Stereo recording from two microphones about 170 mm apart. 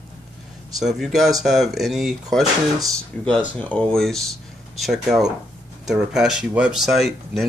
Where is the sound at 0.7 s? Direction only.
Centre (ahead or behind).